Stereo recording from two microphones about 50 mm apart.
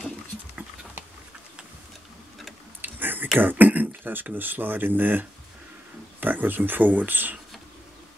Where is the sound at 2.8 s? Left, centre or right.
Right.